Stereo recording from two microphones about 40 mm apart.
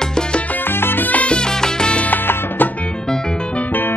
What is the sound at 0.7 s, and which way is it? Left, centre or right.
Salsa music, left.